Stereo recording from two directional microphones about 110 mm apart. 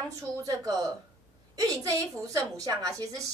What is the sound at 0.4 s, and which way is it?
A woman's voice, 35° right (ahead or behind).